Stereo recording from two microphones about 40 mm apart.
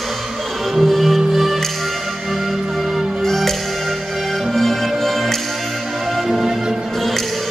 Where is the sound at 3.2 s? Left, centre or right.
Centre.